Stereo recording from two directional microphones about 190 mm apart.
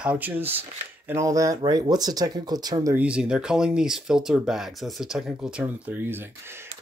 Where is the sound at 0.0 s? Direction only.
10° right (ahead or behind).